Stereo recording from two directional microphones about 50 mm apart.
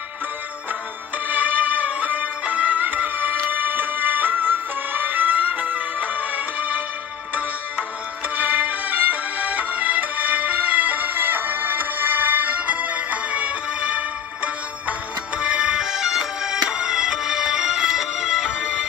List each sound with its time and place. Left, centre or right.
1.3 s music: right
8.4 s music: right
15.8 s music: centre